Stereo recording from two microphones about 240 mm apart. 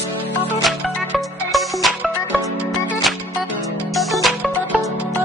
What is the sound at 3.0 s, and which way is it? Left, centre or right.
Music, centre.